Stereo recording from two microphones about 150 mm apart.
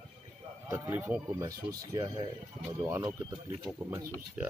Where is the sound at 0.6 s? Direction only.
20° right (ahead or behind).